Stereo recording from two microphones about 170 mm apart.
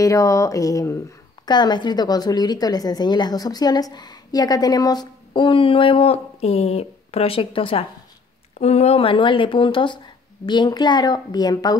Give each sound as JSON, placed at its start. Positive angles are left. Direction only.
{"t": 0.0, "sound": "a woman's voice", "side_deg": 20}